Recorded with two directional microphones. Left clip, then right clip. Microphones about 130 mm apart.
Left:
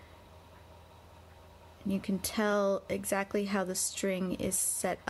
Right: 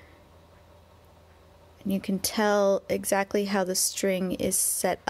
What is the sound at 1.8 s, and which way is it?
Speech, 25° right (ahead or behind).